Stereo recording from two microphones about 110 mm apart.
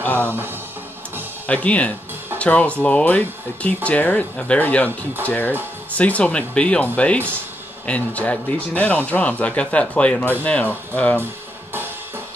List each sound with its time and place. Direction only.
0.0 s music: 15° left (ahead or behind)
1.5 s speech: 10° left (ahead or behind)